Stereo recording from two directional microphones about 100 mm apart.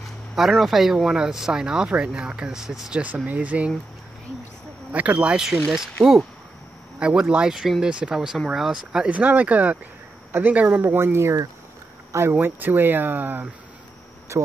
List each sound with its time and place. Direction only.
0.4 s speech: centre (ahead or behind)
4.9 s speech: 15° right (ahead or behind)
7.0 s speech: 10° right (ahead or behind)
14.3 s speech: 30° right (ahead or behind)